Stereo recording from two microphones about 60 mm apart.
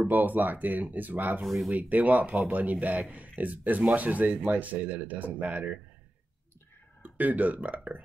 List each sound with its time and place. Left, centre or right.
0.0 s speech: right
1.4 s speech: centre
1.7 s speech: right
7.0 s speech: right